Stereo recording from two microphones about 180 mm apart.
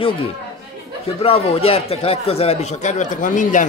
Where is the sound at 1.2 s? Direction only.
30° left (ahead or behind).